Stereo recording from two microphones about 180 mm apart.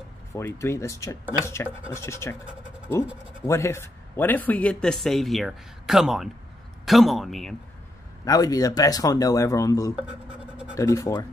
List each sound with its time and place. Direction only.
0.3 s speech: 15° left (ahead or behind)
3.4 s speech: 15° left (ahead or behind)
8.3 s speech: 20° left (ahead or behind)
9.9 s writing: 5° right (ahead or behind)
10.8 s speech: 15° left (ahead or behind)